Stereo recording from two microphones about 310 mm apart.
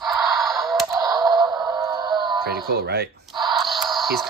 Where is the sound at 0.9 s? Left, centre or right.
Centre.